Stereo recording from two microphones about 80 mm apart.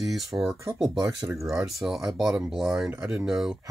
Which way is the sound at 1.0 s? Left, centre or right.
Right.